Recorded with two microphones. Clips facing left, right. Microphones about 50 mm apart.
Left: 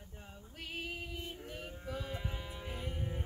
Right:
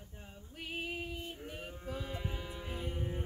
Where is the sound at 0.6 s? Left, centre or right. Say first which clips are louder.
Right 2 dB; centre.